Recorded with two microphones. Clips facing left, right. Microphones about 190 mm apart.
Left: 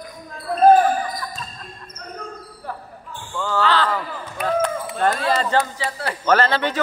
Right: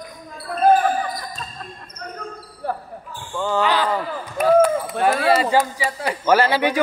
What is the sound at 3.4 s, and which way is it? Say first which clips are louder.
Speech: right 1 dB; 15° right (ahead or behind).